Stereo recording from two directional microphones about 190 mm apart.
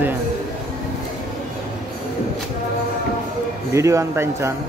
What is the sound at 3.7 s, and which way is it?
Speech, 15° right (ahead or behind).